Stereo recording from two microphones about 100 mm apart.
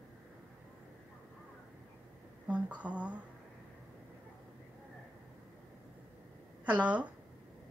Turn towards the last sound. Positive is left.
turn(degrees=-15)  # may be behind; listen again after turning